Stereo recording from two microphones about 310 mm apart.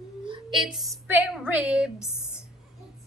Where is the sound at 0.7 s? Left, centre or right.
Centre.